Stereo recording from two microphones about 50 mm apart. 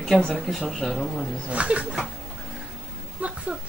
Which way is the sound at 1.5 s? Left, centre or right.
Right.